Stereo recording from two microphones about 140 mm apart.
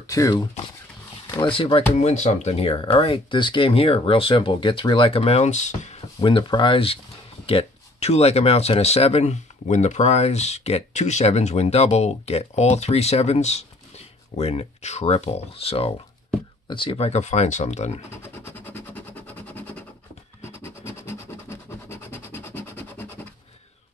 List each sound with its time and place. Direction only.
0.0 s speech: 25° left (ahead or behind); by 1.8 s 40° left (ahead or behind)
2.0 s speech: 55° left (ahead or behind)
6.2 s speech: 35° left (ahead or behind); by 18.0 s 55° left (ahead or behind)
18.1 s a sound: 15° left (ahead or behind)